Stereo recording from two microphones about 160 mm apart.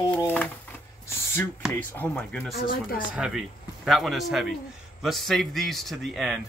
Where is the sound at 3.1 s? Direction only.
5° right (ahead or behind).